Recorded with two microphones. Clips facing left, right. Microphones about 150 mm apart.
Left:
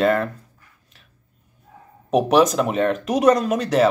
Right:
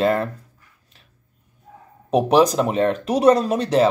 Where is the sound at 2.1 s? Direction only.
30° right (ahead or behind).